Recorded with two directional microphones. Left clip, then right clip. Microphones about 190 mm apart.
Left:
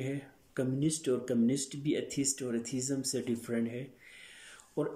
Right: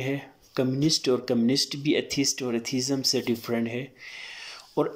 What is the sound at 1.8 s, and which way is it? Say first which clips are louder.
Speech: right 8 dB; 15° left (ahead or behind).